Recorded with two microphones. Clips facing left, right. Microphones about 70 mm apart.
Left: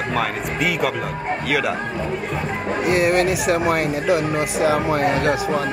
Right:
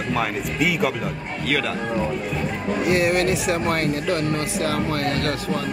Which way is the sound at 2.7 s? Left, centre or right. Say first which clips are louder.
Left 2 dB; centre.